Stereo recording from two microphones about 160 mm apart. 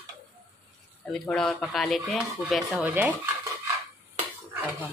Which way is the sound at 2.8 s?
10° right (ahead or behind).